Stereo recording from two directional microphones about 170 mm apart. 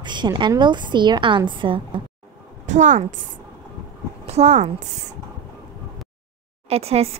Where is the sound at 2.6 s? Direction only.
45° right (ahead or behind).